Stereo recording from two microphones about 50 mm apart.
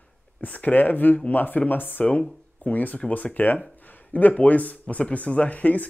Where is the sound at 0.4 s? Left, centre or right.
Left.